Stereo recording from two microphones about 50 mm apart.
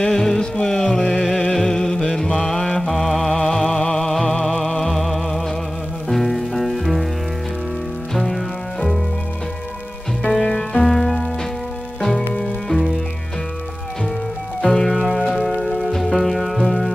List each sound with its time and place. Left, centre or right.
0.0 s music: centre
2.1 s mantra: centre
3.3 s music: centre
3.7 s music: left
4.0 s music: centre
6.0 s rain on surface: centre
8.1 s music: centre
10.3 s music: centre
14.6 s music: centre
15.0 s music: centre